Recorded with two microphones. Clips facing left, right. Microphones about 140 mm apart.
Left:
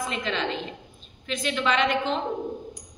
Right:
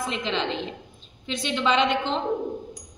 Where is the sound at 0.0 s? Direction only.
25° right (ahead or behind).